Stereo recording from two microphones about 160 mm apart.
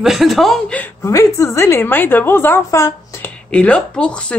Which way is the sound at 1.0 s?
20° left (ahead or behind).